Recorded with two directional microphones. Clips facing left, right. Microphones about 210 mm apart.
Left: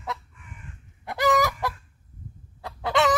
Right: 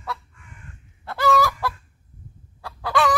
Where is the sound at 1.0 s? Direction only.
15° left (ahead or behind).